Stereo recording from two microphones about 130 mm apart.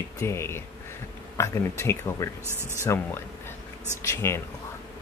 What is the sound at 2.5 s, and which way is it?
Speech, 20° right (ahead or behind).